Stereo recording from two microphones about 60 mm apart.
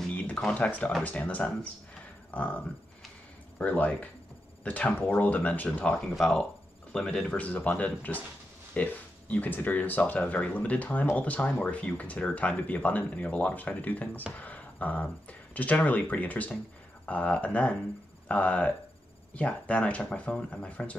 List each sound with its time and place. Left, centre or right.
0.1 s music: left
0.6 s speech: left
5.9 s speech: centre; by 14.2 s left
14.3 s a sound: left
15.5 s speech: left